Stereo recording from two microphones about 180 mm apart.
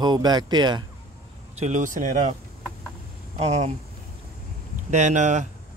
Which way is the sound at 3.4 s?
40° right (ahead or behind).